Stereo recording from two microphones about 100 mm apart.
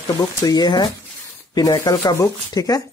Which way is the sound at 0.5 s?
40° left (ahead or behind).